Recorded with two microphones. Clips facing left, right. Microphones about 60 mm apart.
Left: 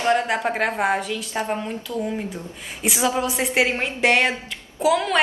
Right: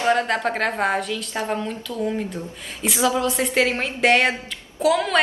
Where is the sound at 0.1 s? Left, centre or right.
Centre.